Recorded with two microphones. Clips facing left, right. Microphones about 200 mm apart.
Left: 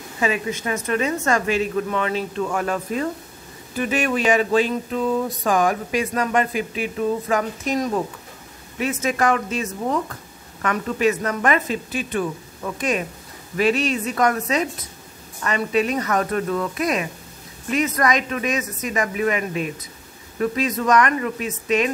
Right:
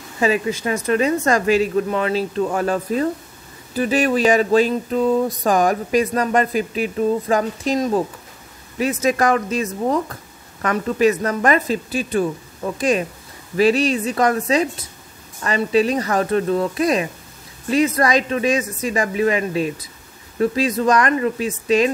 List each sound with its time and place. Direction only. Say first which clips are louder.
0.2 s speech: right 4 dB; 35° right (ahead or behind)